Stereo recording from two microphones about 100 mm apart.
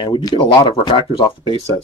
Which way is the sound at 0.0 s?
50° left (ahead or behind).